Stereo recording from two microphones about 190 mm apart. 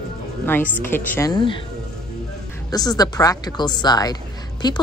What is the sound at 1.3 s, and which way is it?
Speech, 25° left (ahead or behind).